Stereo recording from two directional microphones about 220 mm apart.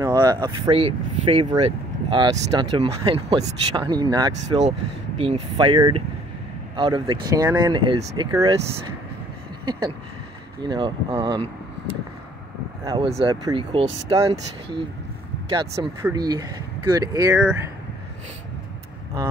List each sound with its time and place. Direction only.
0.0 s speech: 15° right (ahead or behind)
4.6 s speech: 30° right (ahead or behind)
9.7 s speech: 20° right (ahead or behind)
12.8 s speech: 15° right (ahead or behind)
17.4 s speech: 5° right (ahead or behind)